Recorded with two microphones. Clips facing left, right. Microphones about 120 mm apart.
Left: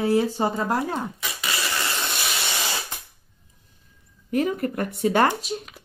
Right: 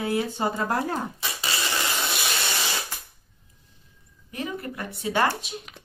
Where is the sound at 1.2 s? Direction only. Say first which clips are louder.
Left 1 dB; 30° right (ahead or behind).